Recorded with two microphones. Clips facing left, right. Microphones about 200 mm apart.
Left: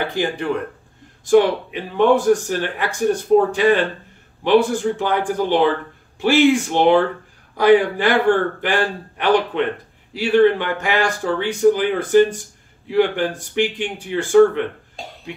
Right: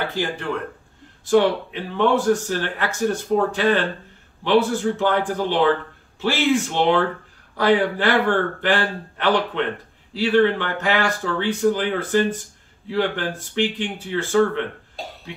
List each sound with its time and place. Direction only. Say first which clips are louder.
0.1 s speech: left 4 dB; 15° left (ahead or behind)